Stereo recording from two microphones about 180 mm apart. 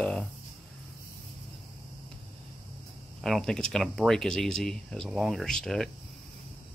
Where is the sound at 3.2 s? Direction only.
Centre (ahead or behind).